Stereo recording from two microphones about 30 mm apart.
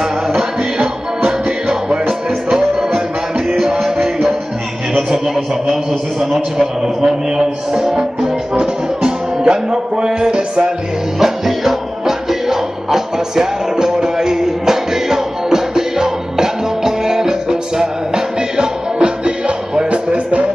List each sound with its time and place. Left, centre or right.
0.0 s music: centre
5.3 s a man's voice: centre
7.0 s music: centre
8.5 s music: right
11.1 s music: centre; by 20.4 s right